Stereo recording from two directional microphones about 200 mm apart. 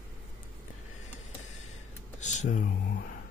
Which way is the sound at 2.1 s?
35° left (ahead or behind).